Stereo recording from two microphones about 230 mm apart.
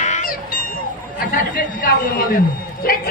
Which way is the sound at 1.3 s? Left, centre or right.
Left.